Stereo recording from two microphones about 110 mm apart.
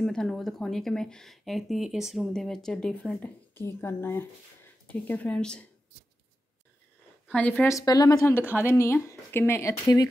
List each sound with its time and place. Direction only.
0.0 s speech: 5° left (ahead or behind)
3.5 s speech: 20° left (ahead or behind)
7.2 s a woman's voice: 10° left (ahead or behind)
7.6 s speech: 30° left (ahead or behind)
8.3 s speech: 20° left (ahead or behind)